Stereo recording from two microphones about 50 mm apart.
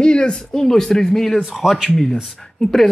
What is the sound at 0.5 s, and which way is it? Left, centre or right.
Speech, centre.